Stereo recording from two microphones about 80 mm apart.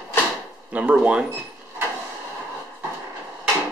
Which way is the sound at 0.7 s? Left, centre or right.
Centre.